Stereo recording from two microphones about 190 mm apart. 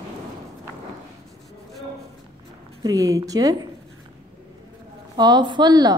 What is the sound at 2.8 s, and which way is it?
Speech, 15° right (ahead or behind).